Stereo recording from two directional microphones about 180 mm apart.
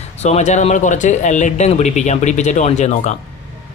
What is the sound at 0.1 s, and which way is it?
Speech, 40° left (ahead or behind).